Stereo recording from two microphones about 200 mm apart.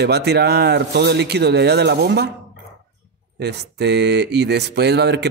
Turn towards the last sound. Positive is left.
turn(degrees=-55)  # may be behind; listen again after turning